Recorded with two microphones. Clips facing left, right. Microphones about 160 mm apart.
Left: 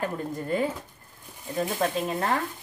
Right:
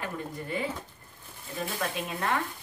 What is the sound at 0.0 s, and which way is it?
Speech, 50° left (ahead or behind).